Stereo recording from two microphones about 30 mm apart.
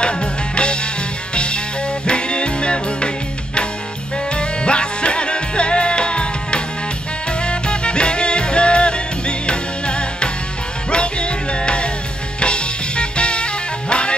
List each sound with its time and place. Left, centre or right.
0.0 s music: left
4.4 s music: left